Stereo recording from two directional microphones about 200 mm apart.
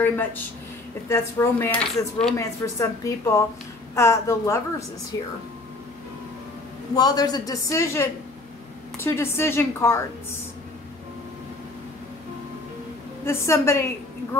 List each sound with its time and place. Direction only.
0.0 s a man's voice: 10° left (ahead or behind)
7.0 s a man's voice: 20° left (ahead or behind)
13.2 s a man's voice: 15° left (ahead or behind)